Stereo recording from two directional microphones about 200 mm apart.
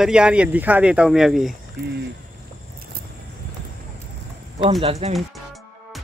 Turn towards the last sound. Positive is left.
turn(degrees=-30)  # may be behind; listen again after turning